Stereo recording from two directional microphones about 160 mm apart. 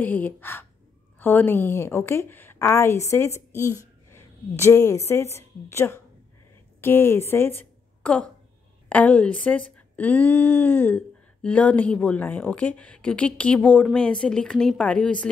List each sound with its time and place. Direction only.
0.0 s a woman's voice: 10° left (ahead or behind)